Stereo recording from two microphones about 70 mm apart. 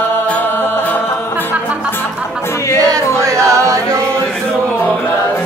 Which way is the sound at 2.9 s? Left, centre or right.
Right.